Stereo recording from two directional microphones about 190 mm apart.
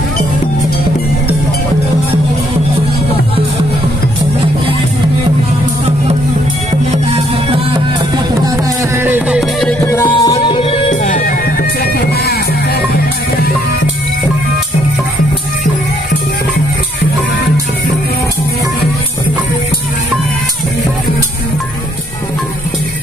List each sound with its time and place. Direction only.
8.9 s music: 10° right (ahead or behind)
9.8 s music: 20° left (ahead or behind)
10.3 s music: 30° left (ahead or behind)
11.8 s music: 55° left (ahead or behind)